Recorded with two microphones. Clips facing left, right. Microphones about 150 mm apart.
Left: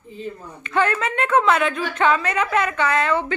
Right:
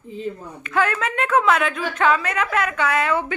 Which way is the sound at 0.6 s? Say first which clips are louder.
Left 1 dB; 5° right (ahead or behind).